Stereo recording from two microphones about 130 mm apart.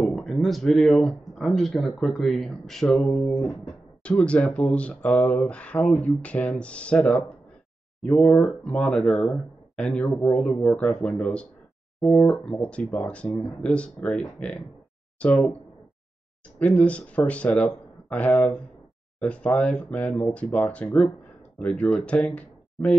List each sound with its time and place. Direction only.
0.0 s speech: centre (ahead or behind)
16.5 s speech: 10° left (ahead or behind)